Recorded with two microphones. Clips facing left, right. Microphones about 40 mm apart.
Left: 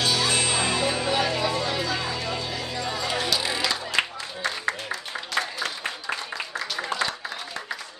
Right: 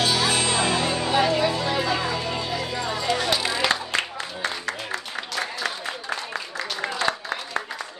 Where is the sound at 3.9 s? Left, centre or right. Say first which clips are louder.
Left 1 dB; right.